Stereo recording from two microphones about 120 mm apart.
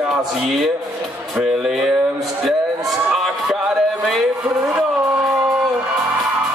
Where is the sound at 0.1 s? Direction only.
Centre (ahead or behind).